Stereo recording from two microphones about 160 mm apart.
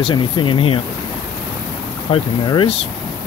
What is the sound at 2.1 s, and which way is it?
Speech, 30° left (ahead or behind).